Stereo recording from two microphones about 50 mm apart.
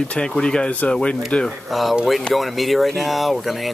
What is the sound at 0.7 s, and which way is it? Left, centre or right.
Speech, left.